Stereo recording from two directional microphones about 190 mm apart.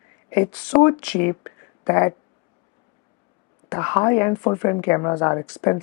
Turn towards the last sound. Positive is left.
turn(degrees=20)  # may be behind; listen again after turning